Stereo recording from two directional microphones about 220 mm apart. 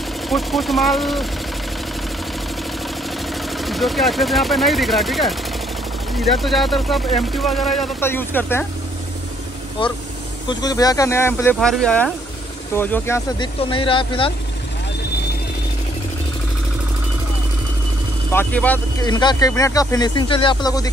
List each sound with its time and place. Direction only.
0.3 s speech: centre (ahead or behind)
3.4 s speech: centre (ahead or behind)
10.5 s speech: 15° left (ahead or behind)
13.6 s speech: 25° left (ahead or behind)
18.3 s speech: 10° left (ahead or behind)
18.9 s speech: 20° left (ahead or behind)